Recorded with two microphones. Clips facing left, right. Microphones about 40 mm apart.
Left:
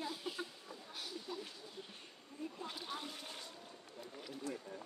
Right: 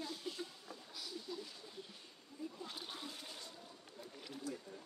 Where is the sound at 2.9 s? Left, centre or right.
Left.